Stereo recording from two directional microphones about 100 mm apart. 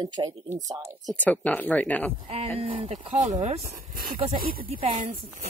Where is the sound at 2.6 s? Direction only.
75° right (ahead or behind).